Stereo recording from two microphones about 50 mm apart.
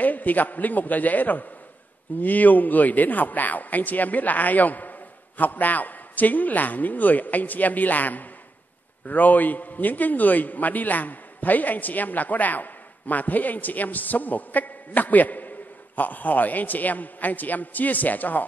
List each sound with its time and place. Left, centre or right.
0.0 s a man's voice: left